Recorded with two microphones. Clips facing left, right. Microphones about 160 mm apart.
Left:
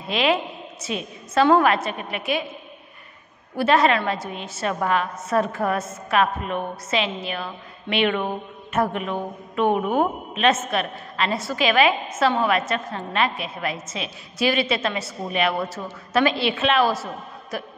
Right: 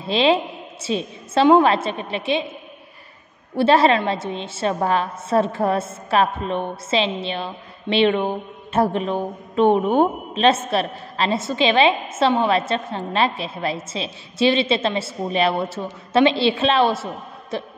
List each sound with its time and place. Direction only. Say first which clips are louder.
0.0 s a woman's voice: right 4 dB; 30° right (ahead or behind)
3.5 s a woman's voice: right 3 dB; 30° right (ahead or behind)